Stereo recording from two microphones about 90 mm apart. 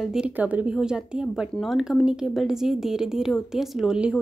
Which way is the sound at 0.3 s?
15° right (ahead or behind).